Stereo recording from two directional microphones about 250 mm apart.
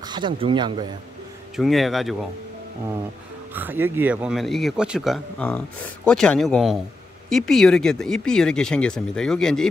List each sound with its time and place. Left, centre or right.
0.1 s speech: centre
1.6 s speech: centre
3.5 s speech: centre